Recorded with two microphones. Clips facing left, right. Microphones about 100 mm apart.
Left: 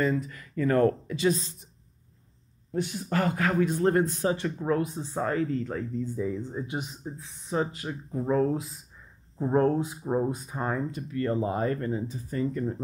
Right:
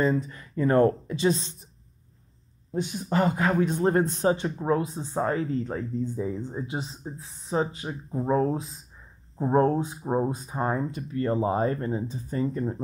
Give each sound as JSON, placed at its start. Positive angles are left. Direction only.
{"t": 0.0, "sound": "a man's voice", "side_deg": -25}
{"t": 2.7, "sound": "a man's voice", "side_deg": -20}